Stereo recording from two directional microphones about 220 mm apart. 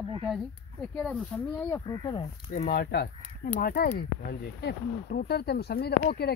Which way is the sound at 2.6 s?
45° left (ahead or behind).